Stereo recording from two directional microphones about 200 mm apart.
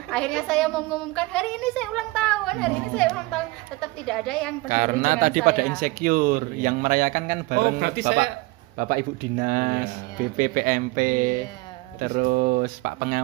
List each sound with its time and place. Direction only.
0.1 s a woman's voice: 5° left (ahead or behind)
4.6 s a man's voice: 40° right (ahead or behind); by 8.3 s 55° right (ahead or behind)
8.7 s speech: 45° right (ahead or behind)